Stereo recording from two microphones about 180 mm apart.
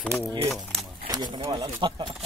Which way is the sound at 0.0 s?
5° left (ahead or behind).